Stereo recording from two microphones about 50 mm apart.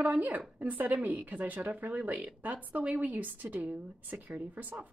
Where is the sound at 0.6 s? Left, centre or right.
Right.